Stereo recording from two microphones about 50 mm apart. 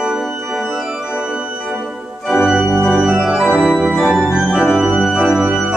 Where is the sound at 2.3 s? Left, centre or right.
Centre.